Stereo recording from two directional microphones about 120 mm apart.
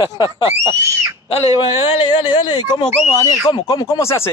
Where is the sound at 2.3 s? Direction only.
45° left (ahead or behind).